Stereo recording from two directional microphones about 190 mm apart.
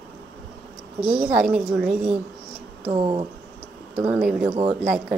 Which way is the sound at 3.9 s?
5° right (ahead or behind).